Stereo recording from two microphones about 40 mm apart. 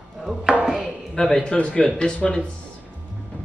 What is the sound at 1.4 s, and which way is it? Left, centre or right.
Speech, left.